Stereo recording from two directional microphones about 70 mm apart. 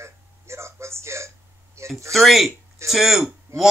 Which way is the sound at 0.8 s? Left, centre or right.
Right.